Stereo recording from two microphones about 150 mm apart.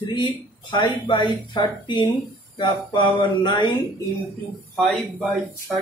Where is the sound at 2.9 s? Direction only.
30° left (ahead or behind).